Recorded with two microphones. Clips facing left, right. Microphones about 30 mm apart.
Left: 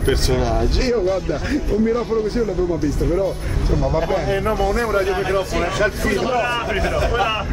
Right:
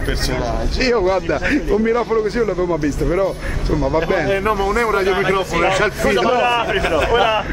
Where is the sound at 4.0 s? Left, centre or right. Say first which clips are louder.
Right 3 dB; right.